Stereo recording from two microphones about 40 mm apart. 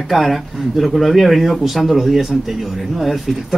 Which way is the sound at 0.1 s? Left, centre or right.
Centre.